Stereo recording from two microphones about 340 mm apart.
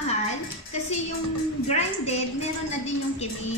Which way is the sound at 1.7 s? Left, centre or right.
Centre.